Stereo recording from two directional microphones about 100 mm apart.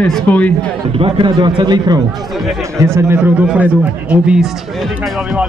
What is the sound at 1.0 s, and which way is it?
A man's voice, 55° right (ahead or behind).